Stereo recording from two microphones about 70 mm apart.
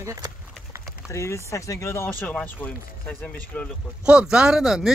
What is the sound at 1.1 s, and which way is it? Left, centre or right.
Speech, left.